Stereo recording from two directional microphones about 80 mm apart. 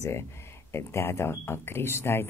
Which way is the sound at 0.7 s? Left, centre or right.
Left.